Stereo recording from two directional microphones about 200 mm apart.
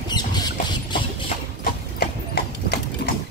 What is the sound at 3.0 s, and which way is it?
Sewing machine, 50° left (ahead or behind).